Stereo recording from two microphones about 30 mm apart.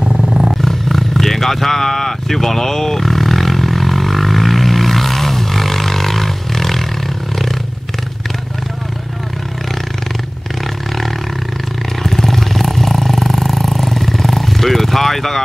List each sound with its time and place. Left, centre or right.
0.1 s a sound: right
0.6 s roaring cats: centre
12.0 s roar: centre